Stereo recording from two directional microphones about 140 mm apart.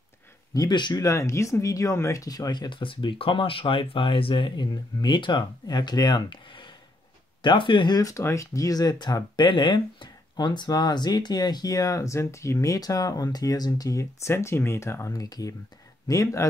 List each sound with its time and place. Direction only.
0.6 s speech: 30° left (ahead or behind)